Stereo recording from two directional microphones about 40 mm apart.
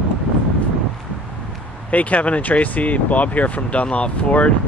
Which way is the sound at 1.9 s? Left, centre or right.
Left.